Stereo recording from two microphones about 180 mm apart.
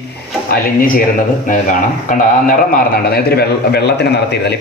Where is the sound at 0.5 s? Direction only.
50° left (ahead or behind).